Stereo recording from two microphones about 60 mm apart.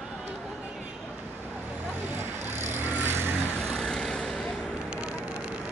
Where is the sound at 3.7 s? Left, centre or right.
Centre.